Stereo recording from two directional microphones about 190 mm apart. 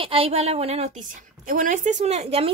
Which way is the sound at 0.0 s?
30° right (ahead or behind).